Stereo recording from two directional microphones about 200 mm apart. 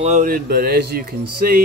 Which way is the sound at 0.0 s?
40° right (ahead or behind).